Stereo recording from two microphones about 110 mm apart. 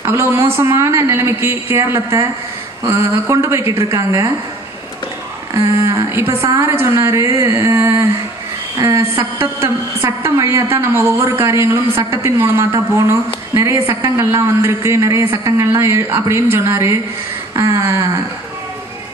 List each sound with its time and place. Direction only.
0.0 s a woman's voice: 25° right (ahead or behind)
5.5 s a woman's voice: 25° right (ahead or behind)